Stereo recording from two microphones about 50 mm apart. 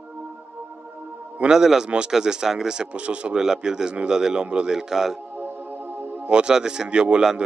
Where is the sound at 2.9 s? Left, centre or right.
Right.